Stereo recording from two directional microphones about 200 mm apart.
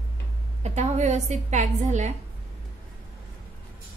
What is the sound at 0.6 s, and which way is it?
A woman's voice, 35° right (ahead or behind).